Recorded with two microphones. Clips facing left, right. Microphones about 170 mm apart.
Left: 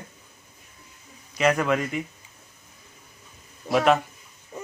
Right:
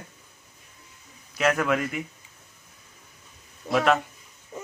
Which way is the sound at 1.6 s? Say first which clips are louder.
Left 1 dB; 5° right (ahead or behind).